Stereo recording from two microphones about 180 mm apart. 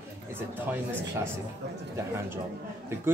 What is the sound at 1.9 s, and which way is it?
Speech, 15° right (ahead or behind).